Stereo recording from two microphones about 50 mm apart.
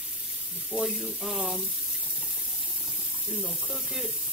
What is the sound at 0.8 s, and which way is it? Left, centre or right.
Speech, centre.